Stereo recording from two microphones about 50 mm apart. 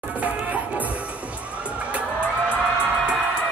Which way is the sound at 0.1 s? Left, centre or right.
Right.